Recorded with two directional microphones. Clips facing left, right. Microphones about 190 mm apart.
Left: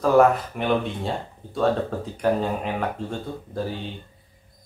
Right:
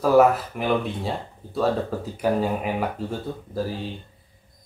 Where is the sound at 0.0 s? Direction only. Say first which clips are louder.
Even; 5° right (ahead or behind).